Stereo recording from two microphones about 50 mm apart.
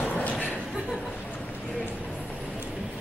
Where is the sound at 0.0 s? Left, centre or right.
Left.